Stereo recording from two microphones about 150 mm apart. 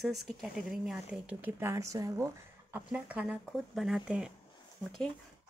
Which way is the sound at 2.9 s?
10° right (ahead or behind).